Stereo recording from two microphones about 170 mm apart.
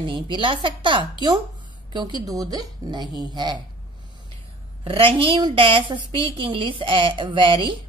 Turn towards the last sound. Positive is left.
turn(degrees=-30)  # may be behind; listen again after turning